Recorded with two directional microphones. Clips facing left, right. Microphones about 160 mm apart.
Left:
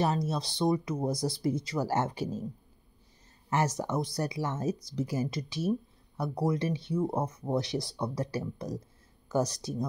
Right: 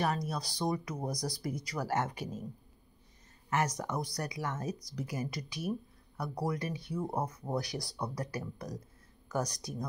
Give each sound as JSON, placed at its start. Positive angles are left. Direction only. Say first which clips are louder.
{"t": 0.0, "sound": "speech", "louder": "left 4 dB", "side_deg": 25}
{"t": 3.4, "sound": "speech", "louder": "left 3 dB", "side_deg": 30}